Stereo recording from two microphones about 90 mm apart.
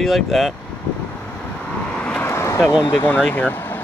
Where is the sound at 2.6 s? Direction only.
30° left (ahead or behind).